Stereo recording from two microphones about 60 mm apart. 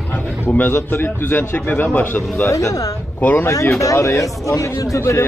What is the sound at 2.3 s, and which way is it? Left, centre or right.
Speech, left.